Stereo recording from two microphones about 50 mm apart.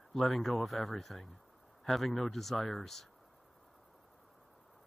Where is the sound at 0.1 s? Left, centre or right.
Centre.